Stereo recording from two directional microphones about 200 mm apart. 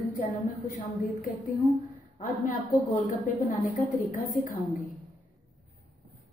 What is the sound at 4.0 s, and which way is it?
Speech, 40° left (ahead or behind).